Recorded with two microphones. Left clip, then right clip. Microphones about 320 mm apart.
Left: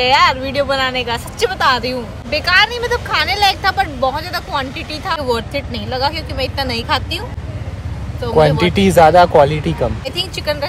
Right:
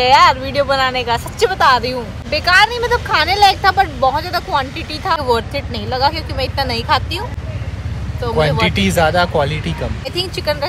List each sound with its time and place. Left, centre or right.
0.0 s speech: centre
8.4 s speech: left
10.0 s speech: centre